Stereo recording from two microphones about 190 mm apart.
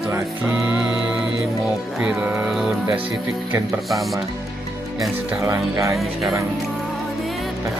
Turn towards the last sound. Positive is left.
turn(degrees=0)  # may be behind; listen again after turning